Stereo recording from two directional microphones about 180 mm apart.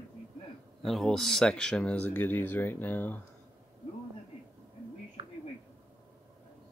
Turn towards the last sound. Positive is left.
turn(degrees=-25)  # may be behind; listen again after turning